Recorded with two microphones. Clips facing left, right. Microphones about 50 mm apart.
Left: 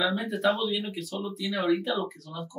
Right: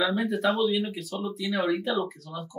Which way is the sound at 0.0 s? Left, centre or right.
Centre.